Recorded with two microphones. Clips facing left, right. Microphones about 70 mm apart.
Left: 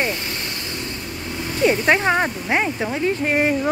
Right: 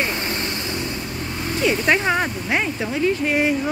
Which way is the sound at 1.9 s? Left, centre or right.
Left.